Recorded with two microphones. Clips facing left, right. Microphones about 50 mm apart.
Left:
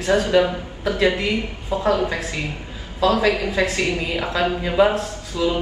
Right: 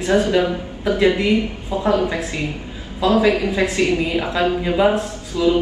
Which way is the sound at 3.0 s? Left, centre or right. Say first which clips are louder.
Right 2 dB; right.